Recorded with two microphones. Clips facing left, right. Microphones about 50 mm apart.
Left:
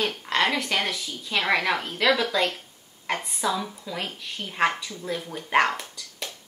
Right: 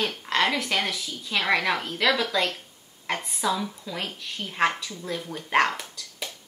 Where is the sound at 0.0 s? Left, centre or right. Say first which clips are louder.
Even; centre.